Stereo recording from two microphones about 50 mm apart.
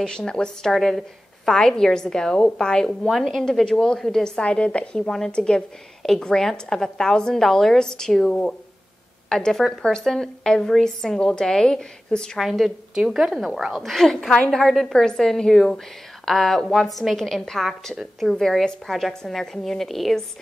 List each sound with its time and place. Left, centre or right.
0.0 s a woman's voice: centre
4.4 s a woman's voice: left
12.4 s a woman's voice: centre
13.8 s a woman's voice: centre